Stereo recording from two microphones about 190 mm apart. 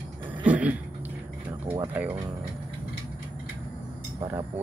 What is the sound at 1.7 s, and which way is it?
Speech, 10° right (ahead or behind).